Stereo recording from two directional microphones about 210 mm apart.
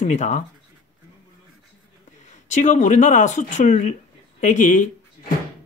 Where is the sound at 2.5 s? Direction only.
35° left (ahead or behind).